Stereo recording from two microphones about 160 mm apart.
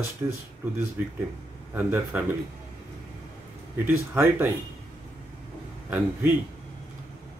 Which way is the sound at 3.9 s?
15° right (ahead or behind).